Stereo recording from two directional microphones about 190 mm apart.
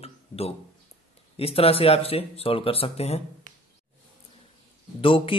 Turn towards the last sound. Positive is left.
turn(degrees=25)  # may be behind; listen again after turning